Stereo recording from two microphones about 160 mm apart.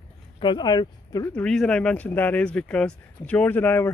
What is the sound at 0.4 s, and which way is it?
Speech, 30° left (ahead or behind).